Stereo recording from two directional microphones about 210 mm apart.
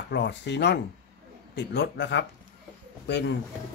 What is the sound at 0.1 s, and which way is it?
Speech, 55° left (ahead or behind).